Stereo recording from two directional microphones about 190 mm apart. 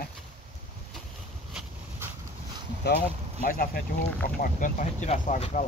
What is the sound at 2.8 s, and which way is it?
Speech, 60° left (ahead or behind).